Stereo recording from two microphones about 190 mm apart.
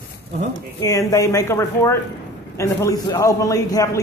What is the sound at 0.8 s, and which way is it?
A man's voice, 15° left (ahead or behind).